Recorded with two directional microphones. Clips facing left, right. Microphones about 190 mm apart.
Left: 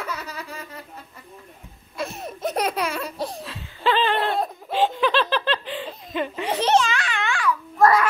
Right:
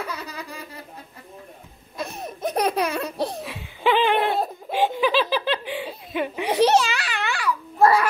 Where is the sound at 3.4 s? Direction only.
15° right (ahead or behind).